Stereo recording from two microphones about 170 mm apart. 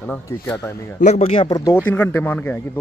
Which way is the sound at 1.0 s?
40° left (ahead or behind).